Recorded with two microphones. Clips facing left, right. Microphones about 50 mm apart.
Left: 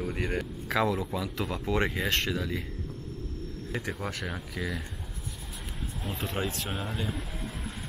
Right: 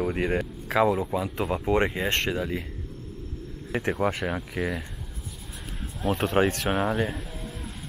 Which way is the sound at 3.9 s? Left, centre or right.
Right.